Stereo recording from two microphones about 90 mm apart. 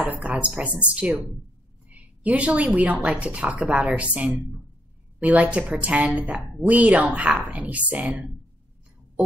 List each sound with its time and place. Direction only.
0.0 s a woman's voice: 15° right (ahead or behind)